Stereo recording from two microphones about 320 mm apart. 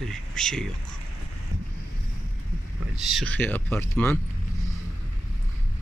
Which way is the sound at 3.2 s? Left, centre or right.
Centre.